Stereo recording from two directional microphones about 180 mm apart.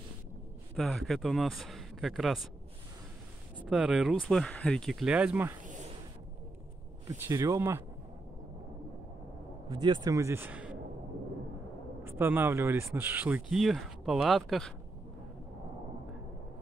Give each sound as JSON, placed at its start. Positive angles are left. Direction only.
{"t": 0.7, "sound": "speech", "side_deg": 0}
{"t": 3.6, "sound": "speech", "side_deg": -5}
{"t": 7.1, "sound": "speech", "side_deg": -20}
{"t": 9.7, "sound": "speech", "side_deg": -25}
{"t": 12.0, "sound": "speech", "side_deg": -10}